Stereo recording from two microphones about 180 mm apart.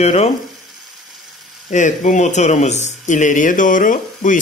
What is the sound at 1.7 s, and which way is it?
Speech, 45° left (ahead or behind).